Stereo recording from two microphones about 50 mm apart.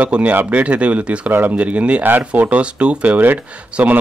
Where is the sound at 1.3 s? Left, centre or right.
Right.